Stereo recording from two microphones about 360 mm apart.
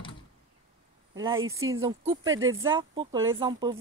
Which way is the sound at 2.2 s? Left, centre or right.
Right.